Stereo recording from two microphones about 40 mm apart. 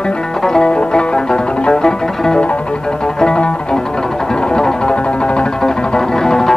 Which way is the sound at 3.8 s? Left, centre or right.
Centre.